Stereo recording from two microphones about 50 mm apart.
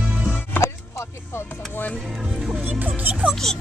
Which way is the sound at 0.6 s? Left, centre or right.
Left.